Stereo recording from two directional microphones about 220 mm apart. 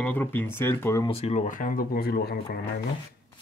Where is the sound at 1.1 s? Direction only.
30° left (ahead or behind); by 2.6 s 45° left (ahead or behind).